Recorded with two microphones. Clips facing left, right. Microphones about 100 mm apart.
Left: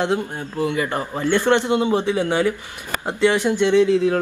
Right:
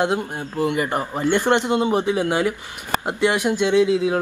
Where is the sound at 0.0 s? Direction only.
15° right (ahead or behind).